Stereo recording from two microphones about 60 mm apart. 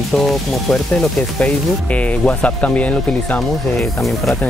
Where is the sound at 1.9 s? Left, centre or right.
Left.